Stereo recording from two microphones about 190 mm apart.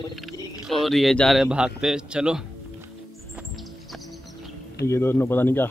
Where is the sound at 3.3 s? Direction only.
Centre (ahead or behind).